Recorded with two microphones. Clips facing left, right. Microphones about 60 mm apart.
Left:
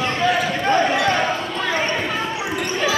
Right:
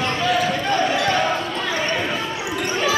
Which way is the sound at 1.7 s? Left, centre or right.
Left.